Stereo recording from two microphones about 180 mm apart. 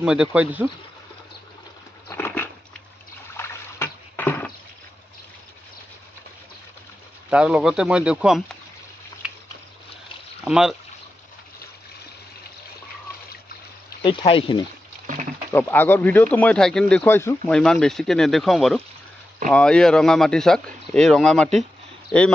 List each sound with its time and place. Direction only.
0.0 s speech: 5° right (ahead or behind)
2.0 s dog: 10° left (ahead or behind)
3.3 s water: 15° left (ahead or behind)
7.2 s speech: 5° right (ahead or behind)
9.2 s a sound: 5° right (ahead or behind)
10.4 s speech: centre (ahead or behind)
14.0 s speech: 30° left (ahead or behind)
15.5 s speech: 10° left (ahead or behind)
17.0 s speech: 15° left (ahead or behind)